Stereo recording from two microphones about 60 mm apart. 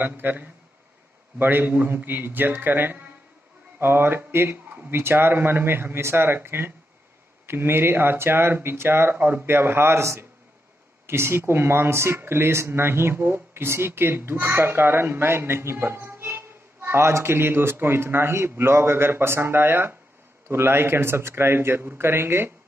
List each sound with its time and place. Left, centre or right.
0.0 s speech: right
4.6 s a sound: right
4.9 s speech: right